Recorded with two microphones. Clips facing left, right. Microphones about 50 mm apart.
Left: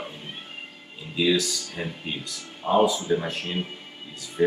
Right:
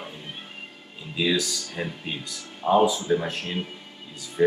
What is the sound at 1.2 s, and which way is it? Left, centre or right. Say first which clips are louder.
Speech: left 2 dB; centre.